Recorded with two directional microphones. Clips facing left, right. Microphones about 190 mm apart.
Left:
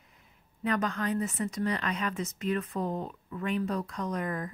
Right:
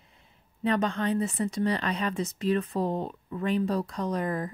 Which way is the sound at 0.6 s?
30° right (ahead or behind).